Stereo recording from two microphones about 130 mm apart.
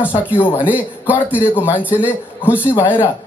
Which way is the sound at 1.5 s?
15° left (ahead or behind).